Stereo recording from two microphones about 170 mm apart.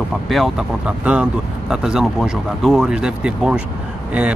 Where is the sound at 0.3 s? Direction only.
Centre (ahead or behind).